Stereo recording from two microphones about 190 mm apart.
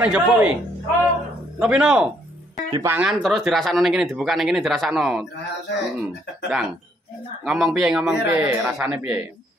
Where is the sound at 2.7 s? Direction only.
20° right (ahead or behind).